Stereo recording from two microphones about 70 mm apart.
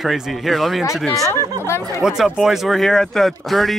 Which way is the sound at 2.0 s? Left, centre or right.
Centre.